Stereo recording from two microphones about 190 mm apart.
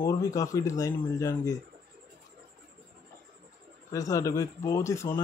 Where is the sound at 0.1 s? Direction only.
15° left (ahead or behind).